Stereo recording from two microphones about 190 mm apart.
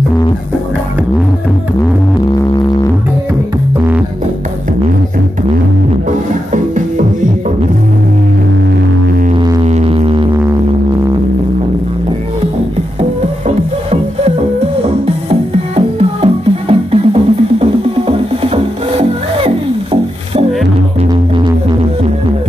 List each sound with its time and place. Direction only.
9.7 s music: 30° right (ahead or behind)
15.2 s music: 30° right (ahead or behind)